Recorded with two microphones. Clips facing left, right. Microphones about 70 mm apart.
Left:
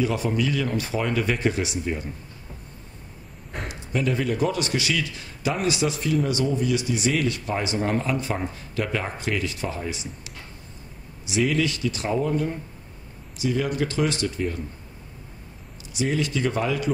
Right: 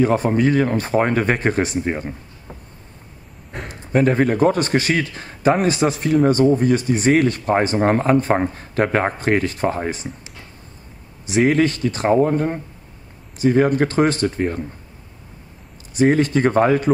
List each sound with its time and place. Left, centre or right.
0.0 s a man's voice: right
3.6 s a man's voice: right
11.2 s a man's voice: right
15.9 s a man's voice: right